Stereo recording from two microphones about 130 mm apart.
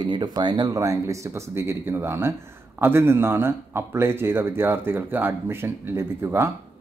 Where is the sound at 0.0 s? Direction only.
35° right (ahead or behind).